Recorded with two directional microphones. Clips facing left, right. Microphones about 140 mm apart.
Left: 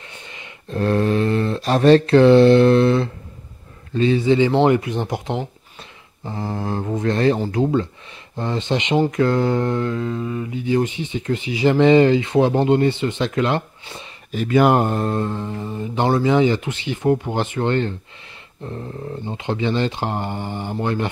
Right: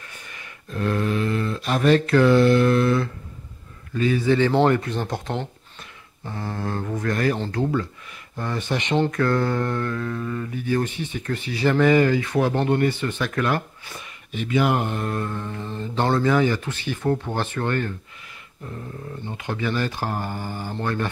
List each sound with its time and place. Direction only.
0.0 s speech: 25° left (ahead or behind)
7.3 s speech: 10° left (ahead or behind)
7.6 s speech: 25° left (ahead or behind)
14.3 s speech: 45° left (ahead or behind); by 17.9 s 25° left (ahead or behind)
18.6 s a sound: 30° left (ahead or behind)
19.2 s speech: 20° left (ahead or behind)